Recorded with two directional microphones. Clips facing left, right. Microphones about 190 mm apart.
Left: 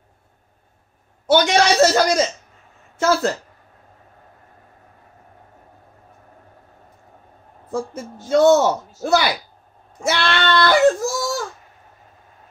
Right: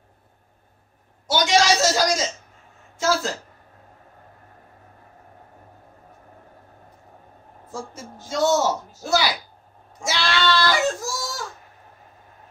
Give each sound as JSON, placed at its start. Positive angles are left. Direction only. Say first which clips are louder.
{"t": 1.2, "sound": "a man's voice", "louder": "left 4 dB", "side_deg": 60}
{"t": 7.7, "sound": "a man's voice", "louder": "left 8 dB", "side_deg": 60}
{"t": 10.0, "sound": "a sound", "louder": "left 3 dB", "side_deg": 60}